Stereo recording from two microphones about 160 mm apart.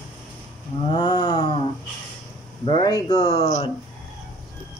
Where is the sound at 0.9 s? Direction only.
30° left (ahead or behind).